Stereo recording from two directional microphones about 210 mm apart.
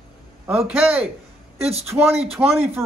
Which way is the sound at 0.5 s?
10° right (ahead or behind).